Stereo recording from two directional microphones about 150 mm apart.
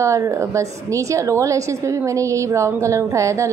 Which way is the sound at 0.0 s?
20° right (ahead or behind).